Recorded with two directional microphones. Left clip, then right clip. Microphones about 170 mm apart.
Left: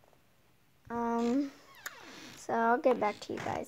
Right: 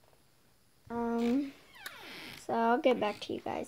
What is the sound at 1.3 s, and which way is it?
Cat, 30° left (ahead or behind).